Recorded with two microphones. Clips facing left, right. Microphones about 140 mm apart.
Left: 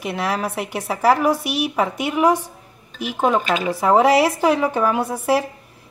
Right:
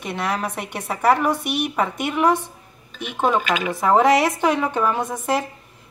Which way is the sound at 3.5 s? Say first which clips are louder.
Left 2 dB; 30° left (ahead or behind).